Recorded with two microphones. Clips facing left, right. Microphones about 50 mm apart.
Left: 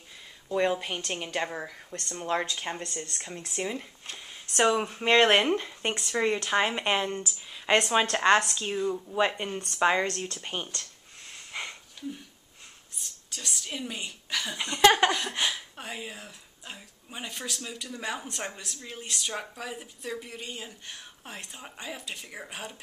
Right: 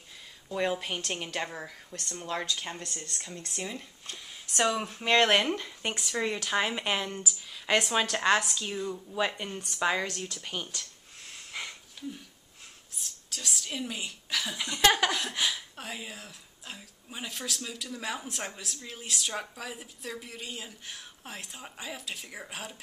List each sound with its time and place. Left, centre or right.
0.5 s speech: centre
2.2 s speech: left
4.7 s speech: centre
7.5 s a sound: centre
8.1 s speech: centre
10.0 s speech: left
10.4 s speech: left
11.2 s wheeze: centre
12.9 s a woman's voice: centre
14.6 s a woman's voice: centre